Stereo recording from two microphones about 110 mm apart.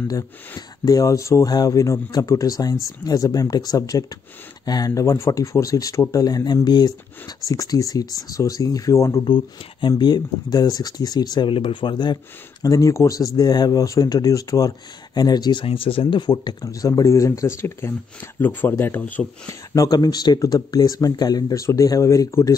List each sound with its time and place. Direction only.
0.1 s speech: 35° left (ahead or behind)
9.2 s speech: 50° left (ahead or behind)
12.6 s speech: 30° left (ahead or behind)
15.6 s a man's voice: 55° left (ahead or behind); by 19.5 s 15° left (ahead or behind)
19.7 s speech: 35° left (ahead or behind)